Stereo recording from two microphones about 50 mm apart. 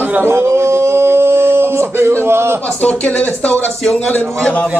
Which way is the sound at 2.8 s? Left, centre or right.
Left.